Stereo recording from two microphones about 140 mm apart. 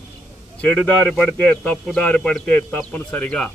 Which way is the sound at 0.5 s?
15° left (ahead or behind).